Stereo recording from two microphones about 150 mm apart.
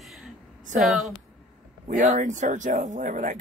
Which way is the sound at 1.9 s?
55° right (ahead or behind).